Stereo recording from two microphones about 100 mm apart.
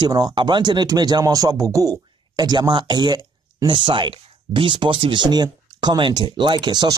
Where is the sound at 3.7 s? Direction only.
55° right (ahead or behind).